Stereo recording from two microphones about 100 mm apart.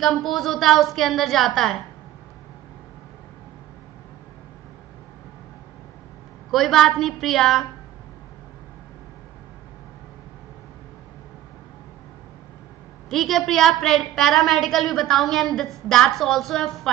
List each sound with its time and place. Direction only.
0.0 s a woman's voice: centre (ahead or behind)
6.5 s a woman's voice: centre (ahead or behind)
13.1 s a woman's voice: centre (ahead or behind)